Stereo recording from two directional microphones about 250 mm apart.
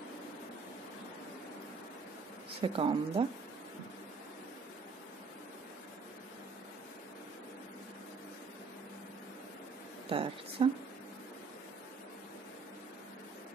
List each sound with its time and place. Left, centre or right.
2.6 s speech: right
10.1 s a sound: right
10.6 s speech: right